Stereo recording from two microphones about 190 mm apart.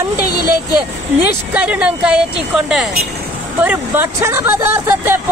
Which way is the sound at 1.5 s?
5° right (ahead or behind).